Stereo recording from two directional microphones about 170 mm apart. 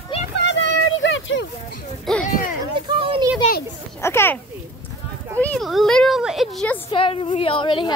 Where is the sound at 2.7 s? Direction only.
30° right (ahead or behind).